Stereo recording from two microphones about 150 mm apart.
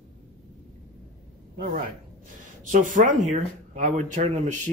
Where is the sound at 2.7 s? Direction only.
60° right (ahead or behind).